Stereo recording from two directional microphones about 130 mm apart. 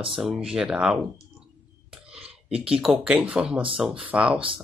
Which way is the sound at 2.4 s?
5° right (ahead or behind).